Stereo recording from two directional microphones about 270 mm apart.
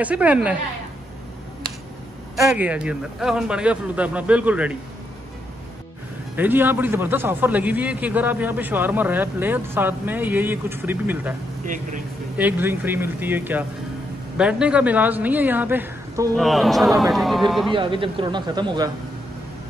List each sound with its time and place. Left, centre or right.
0.0 s a man's voice: centre
2.3 s a man's voice: centre
6.3 s a man's voice: centre
11.6 s speech: right
12.4 s a man's voice: centre
17.6 s a man's voice: centre